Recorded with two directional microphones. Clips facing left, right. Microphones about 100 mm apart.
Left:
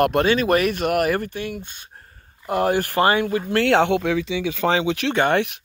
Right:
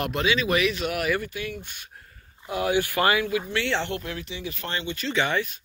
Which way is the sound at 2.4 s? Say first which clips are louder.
Left 4 dB; 50° left (ahead or behind).